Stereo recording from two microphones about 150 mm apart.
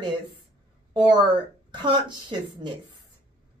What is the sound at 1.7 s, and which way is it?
Speech, 30° right (ahead or behind).